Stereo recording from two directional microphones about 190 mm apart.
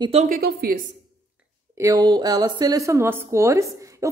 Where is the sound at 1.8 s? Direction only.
20° right (ahead or behind).